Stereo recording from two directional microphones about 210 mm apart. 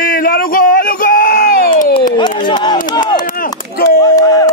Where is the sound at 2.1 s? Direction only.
20° left (ahead or behind).